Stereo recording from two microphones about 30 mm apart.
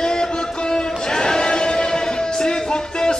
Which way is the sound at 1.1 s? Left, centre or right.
Left.